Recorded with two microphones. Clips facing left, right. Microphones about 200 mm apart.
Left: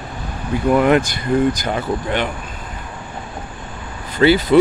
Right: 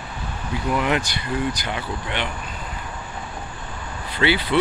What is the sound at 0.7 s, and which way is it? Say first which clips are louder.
Speech: left 9 dB; 50° left (ahead or behind).